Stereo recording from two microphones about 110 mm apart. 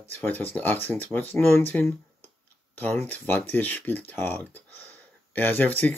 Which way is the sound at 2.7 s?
15° left (ahead or behind).